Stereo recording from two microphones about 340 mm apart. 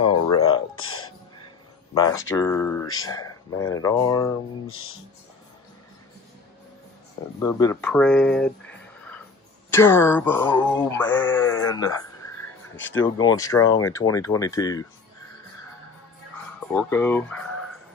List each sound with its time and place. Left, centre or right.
0.4 s a sound: left
2.0 s male singing: centre
7.3 s speech: centre
9.7 s male singing: centre
12.7 s speech: left
13.0 s male singing: centre
16.7 s speech: centre